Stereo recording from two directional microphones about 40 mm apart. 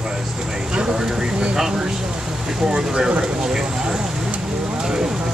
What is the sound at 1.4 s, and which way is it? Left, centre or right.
Speech, centre.